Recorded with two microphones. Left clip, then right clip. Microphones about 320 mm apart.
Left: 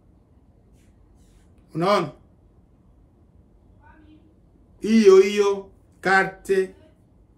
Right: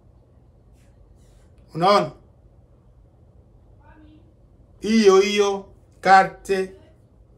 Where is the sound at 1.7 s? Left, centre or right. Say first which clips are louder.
Right 4 dB; centre.